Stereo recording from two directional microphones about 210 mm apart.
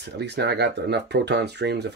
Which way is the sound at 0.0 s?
55° right (ahead or behind).